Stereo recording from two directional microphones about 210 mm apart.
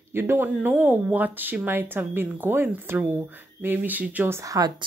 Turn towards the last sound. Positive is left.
turn(degrees=-15)  # may be behind; listen again after turning